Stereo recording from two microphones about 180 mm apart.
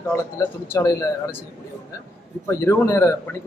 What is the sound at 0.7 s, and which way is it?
Speech, 15° left (ahead or behind).